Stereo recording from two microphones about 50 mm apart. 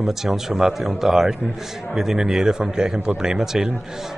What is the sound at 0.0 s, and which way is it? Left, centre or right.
Speech, centre.